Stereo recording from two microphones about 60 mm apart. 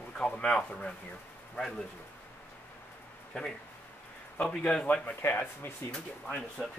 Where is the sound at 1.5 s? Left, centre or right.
Centre.